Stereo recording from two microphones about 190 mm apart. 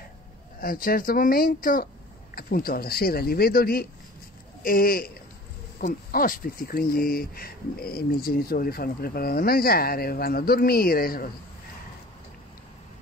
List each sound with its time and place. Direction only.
0.6 s speech: 50° left (ahead or behind)